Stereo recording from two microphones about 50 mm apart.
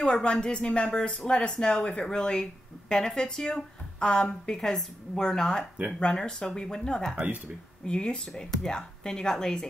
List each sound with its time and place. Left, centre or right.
0.0 s speech: left